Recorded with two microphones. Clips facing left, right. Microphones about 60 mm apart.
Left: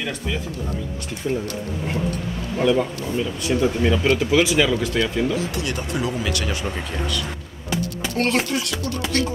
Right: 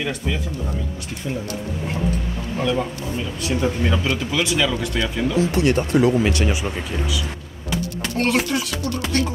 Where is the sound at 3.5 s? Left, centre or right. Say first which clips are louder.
Left 2 dB; centre.